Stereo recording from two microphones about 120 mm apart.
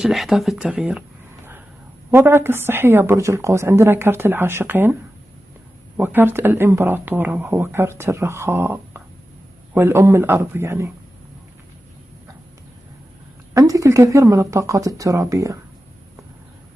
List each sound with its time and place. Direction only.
0.0 s speech: centre (ahead or behind)
2.0 s speech: 20° right (ahead or behind)
5.9 s speech: 15° right (ahead or behind)
13.5 s speech: 25° right (ahead or behind)